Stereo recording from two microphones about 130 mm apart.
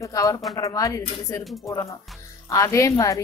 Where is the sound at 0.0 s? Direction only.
25° left (ahead or behind).